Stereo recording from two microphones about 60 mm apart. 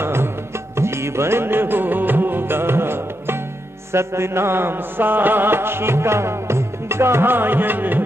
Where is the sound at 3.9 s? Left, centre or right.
Right.